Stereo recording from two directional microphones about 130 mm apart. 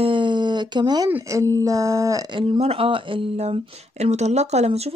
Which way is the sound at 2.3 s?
45° right (ahead or behind).